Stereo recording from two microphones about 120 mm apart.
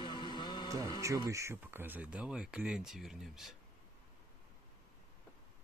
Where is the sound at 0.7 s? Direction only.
25° right (ahead or behind); by 3.6 s 5° right (ahead or behind).